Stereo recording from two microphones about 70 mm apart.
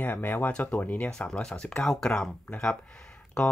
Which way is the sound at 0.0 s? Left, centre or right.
Left.